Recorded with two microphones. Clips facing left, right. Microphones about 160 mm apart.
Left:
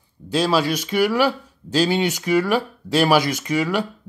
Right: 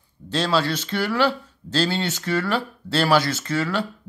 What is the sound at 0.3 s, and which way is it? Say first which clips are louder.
Speech: left 3 dB; 10° left (ahead or behind).